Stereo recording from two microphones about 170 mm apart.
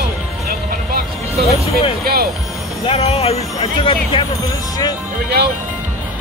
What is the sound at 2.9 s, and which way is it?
Speech, 35° left (ahead or behind).